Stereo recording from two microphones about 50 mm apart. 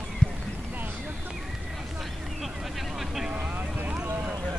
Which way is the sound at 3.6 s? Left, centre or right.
Right.